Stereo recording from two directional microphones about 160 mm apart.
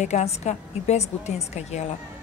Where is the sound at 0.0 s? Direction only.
45° left (ahead or behind).